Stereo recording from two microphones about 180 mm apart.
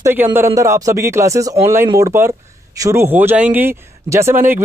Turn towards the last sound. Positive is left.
turn(degrees=-10)  # may be behind; listen again after turning